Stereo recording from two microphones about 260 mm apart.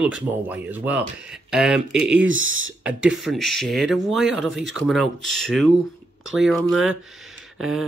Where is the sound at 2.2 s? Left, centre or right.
Right.